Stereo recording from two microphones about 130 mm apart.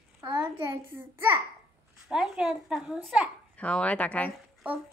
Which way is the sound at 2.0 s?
5° right (ahead or behind).